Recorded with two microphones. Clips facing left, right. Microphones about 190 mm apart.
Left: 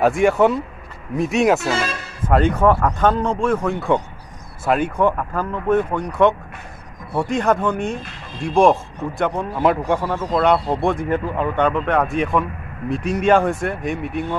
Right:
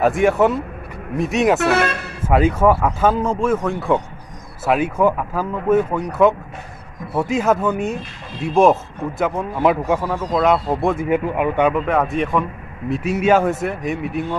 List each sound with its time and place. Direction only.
0.0 s speech: centre (ahead or behind)
1.6 s speech: 65° right (ahead or behind)
2.2 s speech: 5° right (ahead or behind)